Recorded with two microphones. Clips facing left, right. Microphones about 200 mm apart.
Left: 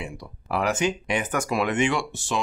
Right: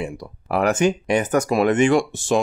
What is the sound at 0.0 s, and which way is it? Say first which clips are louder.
Speech: right 7 dB; 50° right (ahead or behind).